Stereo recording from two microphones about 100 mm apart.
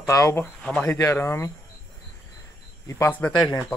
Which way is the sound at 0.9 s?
25° left (ahead or behind).